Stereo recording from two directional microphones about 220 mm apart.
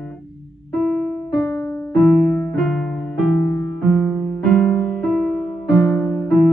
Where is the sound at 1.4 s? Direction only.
15° left (ahead or behind).